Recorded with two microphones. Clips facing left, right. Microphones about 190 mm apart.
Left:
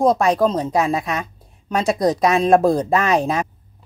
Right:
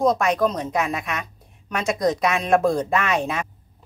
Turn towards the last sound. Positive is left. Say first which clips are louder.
# left 5 dB
turn(degrees=35)  # may be behind; listen again after turning